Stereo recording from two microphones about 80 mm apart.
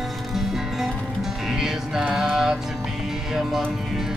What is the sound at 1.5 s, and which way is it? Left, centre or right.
Music, centre.